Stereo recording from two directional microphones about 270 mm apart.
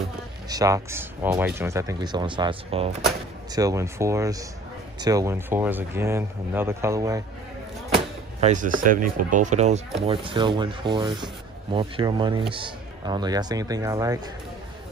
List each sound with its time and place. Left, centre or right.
0.5 s a man's voice: centre
7.9 s a sound: right
9.1 s a man's voice: right; by 14.2 s centre